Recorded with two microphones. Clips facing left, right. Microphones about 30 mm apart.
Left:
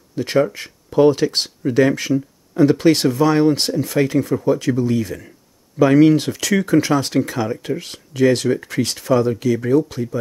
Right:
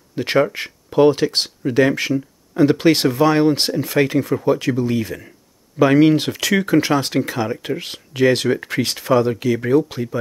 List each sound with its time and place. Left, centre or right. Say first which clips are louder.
0.1 s speech: even; right
0.8 s speech: even; centre